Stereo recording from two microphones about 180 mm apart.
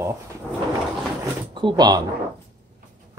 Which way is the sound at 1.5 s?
25° right (ahead or behind).